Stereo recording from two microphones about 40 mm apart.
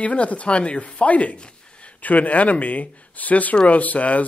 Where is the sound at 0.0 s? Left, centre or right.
Left.